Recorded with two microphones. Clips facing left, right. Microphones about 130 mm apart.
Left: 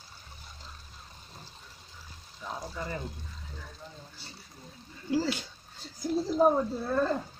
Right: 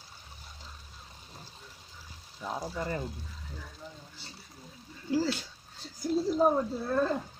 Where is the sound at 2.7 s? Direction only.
35° right (ahead or behind).